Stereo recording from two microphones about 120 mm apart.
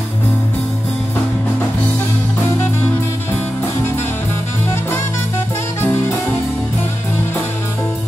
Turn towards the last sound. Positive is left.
turn(degrees=20)  # may be behind; listen again after turning